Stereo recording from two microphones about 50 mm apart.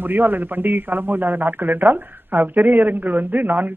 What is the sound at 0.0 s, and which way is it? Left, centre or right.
Speech, right.